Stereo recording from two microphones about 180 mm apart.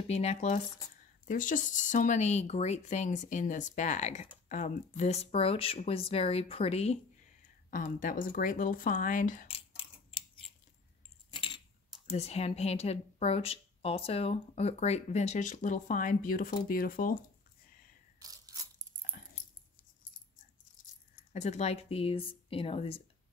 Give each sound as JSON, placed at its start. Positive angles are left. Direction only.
{"t": 0.1, "sound": "speech", "side_deg": 35}
{"t": 7.7, "sound": "speech", "side_deg": 50}
{"t": 9.5, "sound": "clock", "side_deg": 30}
{"t": 11.3, "sound": "coin", "side_deg": 30}
{"t": 12.1, "sound": "speech", "side_deg": 35}
{"t": 18.2, "sound": "a sound", "side_deg": -20}
{"t": 21.3, "sound": "speech", "side_deg": 40}